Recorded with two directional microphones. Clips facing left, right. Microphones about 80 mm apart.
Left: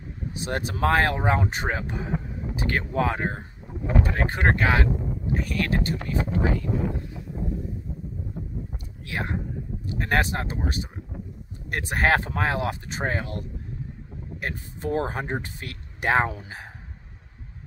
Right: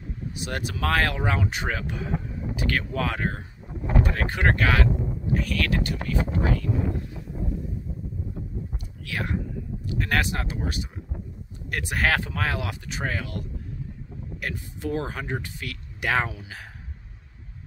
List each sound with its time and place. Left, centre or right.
0.3 s speech: left
6.6 s a sound: centre
9.0 s speech: left